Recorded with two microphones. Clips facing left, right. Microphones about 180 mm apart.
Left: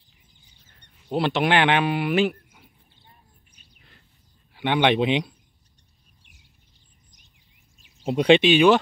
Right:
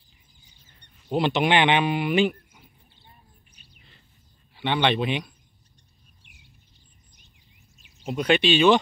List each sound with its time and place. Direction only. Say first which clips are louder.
1.0 s speech: even; centre (ahead or behind)
4.6 s speech: left 3 dB; 15° left (ahead or behind)
8.0 s speech: left 6 dB; 30° left (ahead or behind)
8.4 s speech: left 2 dB; 15° left (ahead or behind)